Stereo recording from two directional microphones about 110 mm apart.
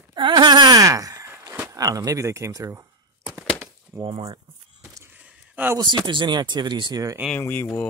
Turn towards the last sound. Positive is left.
turn(degrees=15)  # may be behind; listen again after turning